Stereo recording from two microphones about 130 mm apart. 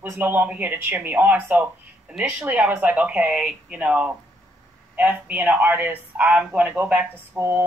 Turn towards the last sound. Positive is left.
turn(degrees=-15)  # may be behind; listen again after turning